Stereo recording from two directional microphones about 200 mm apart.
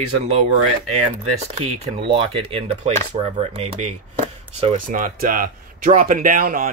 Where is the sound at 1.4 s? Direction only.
30° right (ahead or behind).